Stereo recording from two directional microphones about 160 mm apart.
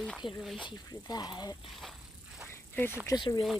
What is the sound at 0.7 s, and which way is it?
Speech, 25° left (ahead or behind).